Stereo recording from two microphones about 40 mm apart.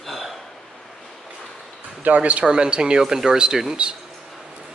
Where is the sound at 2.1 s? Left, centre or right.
Right.